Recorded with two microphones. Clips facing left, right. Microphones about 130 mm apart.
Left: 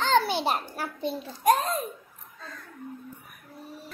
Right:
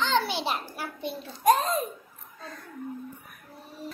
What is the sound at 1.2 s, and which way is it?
Speech, 5° left (ahead or behind).